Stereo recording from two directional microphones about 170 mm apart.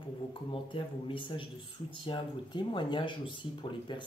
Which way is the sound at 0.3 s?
30° left (ahead or behind).